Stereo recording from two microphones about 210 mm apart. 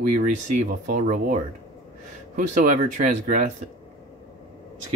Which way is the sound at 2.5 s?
35° right (ahead or behind).